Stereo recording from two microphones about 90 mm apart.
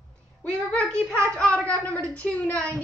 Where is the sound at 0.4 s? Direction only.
10° left (ahead or behind).